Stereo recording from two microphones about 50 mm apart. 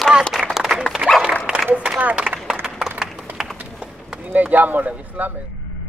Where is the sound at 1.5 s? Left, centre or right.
Centre.